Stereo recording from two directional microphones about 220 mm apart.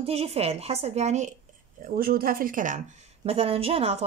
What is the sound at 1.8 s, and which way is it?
A woman's voice, 40° right (ahead or behind).